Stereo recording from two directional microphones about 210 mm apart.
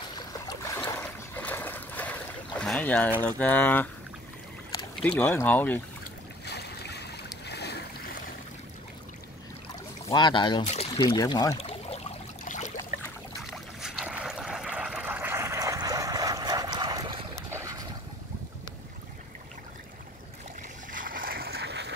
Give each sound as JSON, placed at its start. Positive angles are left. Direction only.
{"t": 0.1, "sound": "boat", "side_deg": 20}
{"t": 4.9, "sound": "speech", "side_deg": 5}
{"t": 6.4, "sound": "boat", "side_deg": 50}
{"t": 10.0, "sound": "pour", "side_deg": 20}
{"t": 13.4, "sound": "boat", "side_deg": 0}
{"t": 20.9, "sound": "a sound", "side_deg": -40}